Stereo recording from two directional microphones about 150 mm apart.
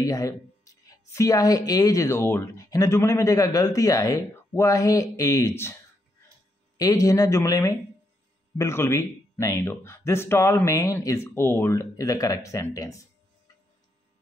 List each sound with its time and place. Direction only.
0.0 s speech: 20° left (ahead or behind)
6.8 s speech: 25° left (ahead or behind)